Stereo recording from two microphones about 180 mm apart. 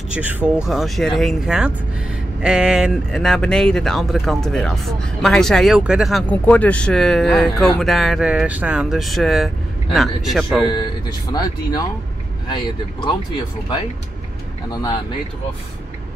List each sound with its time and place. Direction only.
0.1 s speech: 10° right (ahead or behind)
6.3 s speech: 10° left (ahead or behind)
11.3 s speech: 20° left (ahead or behind)
14.7 s speech: 25° left (ahead or behind)